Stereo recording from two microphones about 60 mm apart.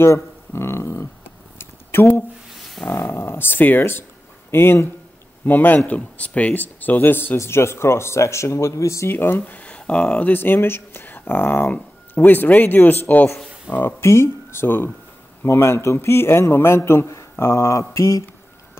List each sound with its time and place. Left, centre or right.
0.0 s a sound: left
2.9 s speech: left
4.5 s speech: left
5.4 s speech: left
9.1 s speech: left
9.6 s speech: centre
10.3 s speech: left
14.0 s speech: left